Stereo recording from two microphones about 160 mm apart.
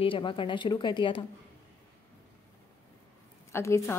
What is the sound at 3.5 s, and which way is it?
Speech, 15° left (ahead or behind).